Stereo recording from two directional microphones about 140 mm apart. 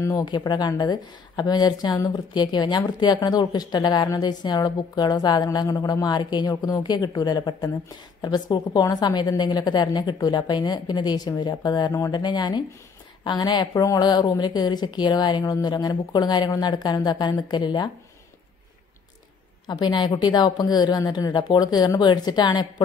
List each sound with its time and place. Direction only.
0.0 s a woman's voice: 25° left (ahead or behind)
19.6 s speech: 30° left (ahead or behind)